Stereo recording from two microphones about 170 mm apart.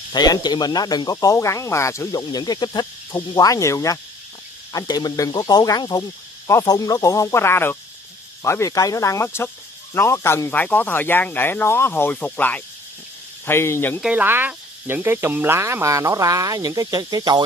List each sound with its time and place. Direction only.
0.1 s speech: 25° left (ahead or behind)
14.0 s cricket: 10° right (ahead or behind)